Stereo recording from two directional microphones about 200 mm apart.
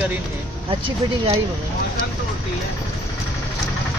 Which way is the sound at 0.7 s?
25° right (ahead or behind).